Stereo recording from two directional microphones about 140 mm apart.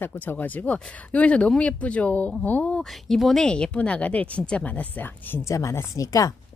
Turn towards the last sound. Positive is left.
turn(degrees=25)  # may be behind; listen again after turning